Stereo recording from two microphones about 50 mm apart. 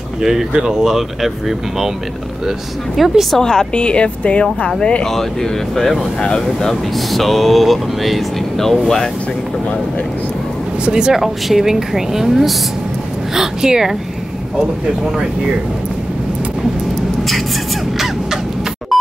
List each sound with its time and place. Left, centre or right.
0.2 s speech: centre
3.0 s speech: centre
3.3 s speech: centre
5.0 s speech: centre
10.8 s speech: centre
17.2 s vehicle: centre
17.9 s crow: centre